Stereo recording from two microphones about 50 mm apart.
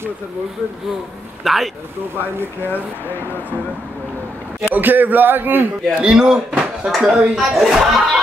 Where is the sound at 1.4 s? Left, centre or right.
Centre.